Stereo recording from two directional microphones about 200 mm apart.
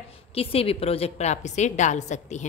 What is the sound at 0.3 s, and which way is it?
A woman's voice, 30° left (ahead or behind).